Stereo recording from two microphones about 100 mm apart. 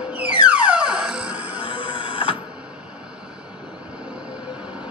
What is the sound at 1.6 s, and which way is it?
Train, 55° left (ahead or behind).